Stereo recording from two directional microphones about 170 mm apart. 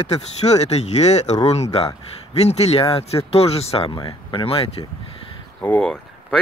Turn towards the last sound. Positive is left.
turn(degrees=5)  # may be behind; listen again after turning